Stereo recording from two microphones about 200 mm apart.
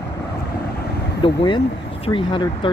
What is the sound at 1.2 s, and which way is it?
Speech, 25° left (ahead or behind).